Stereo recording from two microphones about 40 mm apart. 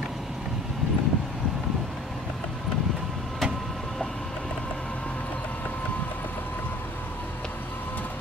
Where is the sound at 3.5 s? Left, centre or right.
Centre; by 5.1 s left.